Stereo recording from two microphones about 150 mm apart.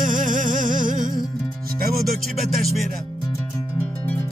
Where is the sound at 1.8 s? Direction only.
85° right.